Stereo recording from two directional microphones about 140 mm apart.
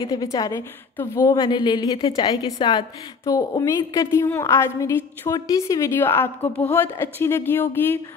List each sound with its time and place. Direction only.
0.0 s a woman's voice: 25° left (ahead or behind)
1.3 s a woman's voice: 35° left (ahead or behind); by 8.0 s 15° left (ahead or behind)